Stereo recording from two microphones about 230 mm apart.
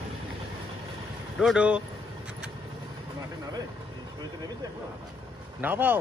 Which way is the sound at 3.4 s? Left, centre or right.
Centre.